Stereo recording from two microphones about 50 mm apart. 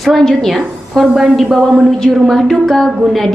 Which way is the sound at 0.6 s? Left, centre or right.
Centre.